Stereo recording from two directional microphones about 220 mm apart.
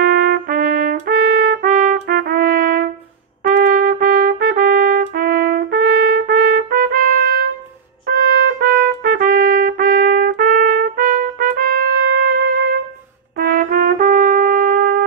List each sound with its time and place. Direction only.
0.0 s trumpet: 45° right (ahead or behind)
13.4 s trumpet: 40° right (ahead or behind)